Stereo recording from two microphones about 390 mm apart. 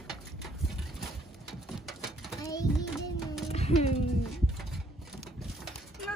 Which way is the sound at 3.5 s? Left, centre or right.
Centre.